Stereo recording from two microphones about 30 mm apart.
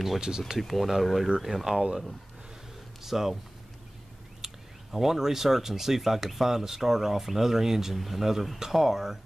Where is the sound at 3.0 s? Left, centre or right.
Centre.